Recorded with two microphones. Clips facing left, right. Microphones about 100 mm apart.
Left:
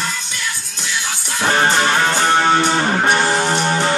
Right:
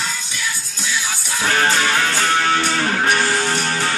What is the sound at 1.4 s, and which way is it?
Music, 25° left (ahead or behind).